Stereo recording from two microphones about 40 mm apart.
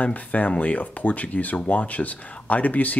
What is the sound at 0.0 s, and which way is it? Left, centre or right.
Speech, left.